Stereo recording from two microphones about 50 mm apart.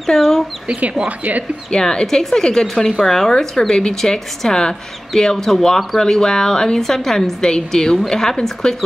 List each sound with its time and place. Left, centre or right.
0.0 s a woman's voice: centre
0.7 s speech: right
1.7 s a woman's voice: centre